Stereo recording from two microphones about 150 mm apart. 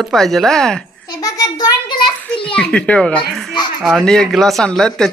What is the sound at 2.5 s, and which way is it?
A child's voice, 5° left (ahead or behind).